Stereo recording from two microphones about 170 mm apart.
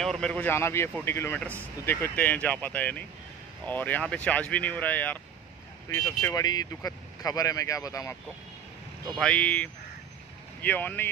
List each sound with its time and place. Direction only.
0.0 s speech: 5° left (ahead or behind); by 8.2 s 20° left (ahead or behind)
9.2 s speech: 10° left (ahead or behind)